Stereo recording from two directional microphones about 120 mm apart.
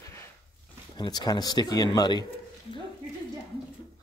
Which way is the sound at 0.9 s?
35° left (ahead or behind).